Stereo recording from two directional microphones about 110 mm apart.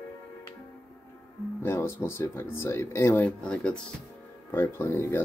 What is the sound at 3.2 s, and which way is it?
Speech, 10° left (ahead or behind).